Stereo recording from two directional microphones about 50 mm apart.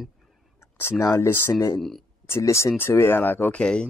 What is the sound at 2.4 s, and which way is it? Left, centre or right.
Speech, left.